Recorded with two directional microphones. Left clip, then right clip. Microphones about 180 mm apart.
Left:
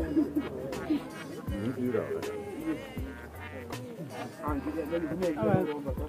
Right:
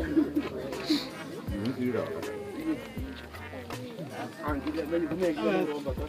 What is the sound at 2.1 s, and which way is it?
Music, centre (ahead or behind).